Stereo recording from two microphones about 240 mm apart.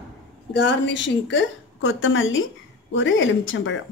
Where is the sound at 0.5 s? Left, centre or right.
Left.